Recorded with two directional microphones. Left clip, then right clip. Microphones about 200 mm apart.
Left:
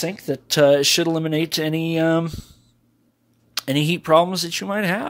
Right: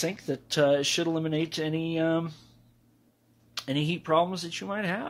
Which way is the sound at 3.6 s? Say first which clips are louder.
Left 9 dB; 55° left (ahead or behind).